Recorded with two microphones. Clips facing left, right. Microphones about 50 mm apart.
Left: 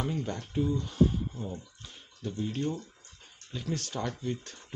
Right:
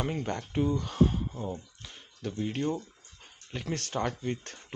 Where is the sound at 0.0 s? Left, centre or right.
Right.